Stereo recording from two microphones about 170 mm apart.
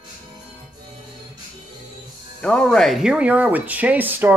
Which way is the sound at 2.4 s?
5° left (ahead or behind).